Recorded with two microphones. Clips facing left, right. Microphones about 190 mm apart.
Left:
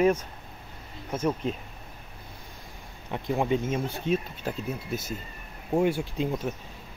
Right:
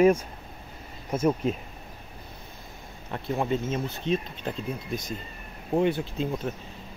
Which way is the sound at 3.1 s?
15° left (ahead or behind).